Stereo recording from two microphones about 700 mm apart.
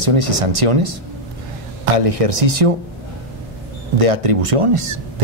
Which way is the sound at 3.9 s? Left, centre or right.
Right.